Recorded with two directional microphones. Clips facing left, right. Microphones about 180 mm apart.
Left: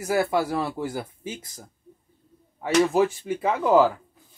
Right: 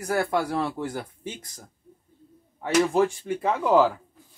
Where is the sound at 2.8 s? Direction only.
5° left (ahead or behind).